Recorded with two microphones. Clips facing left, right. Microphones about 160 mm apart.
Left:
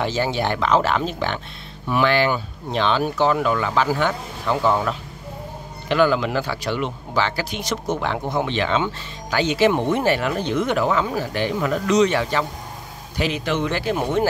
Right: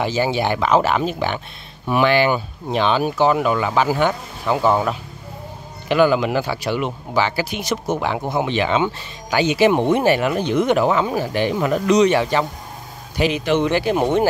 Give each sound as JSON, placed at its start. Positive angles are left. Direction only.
{"t": 0.0, "sound": "speech", "side_deg": -5}